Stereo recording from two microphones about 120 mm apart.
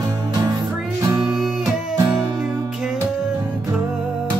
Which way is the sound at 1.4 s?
5° right (ahead or behind).